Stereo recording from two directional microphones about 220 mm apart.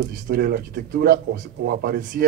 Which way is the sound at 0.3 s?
45° right (ahead or behind).